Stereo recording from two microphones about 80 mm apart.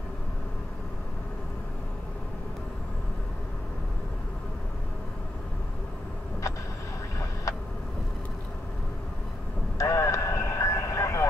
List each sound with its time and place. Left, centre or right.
7.5 s vehicle: left
9.8 s vehicle: left